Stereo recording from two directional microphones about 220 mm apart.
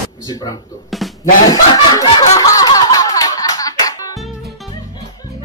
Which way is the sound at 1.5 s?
15° left (ahead or behind).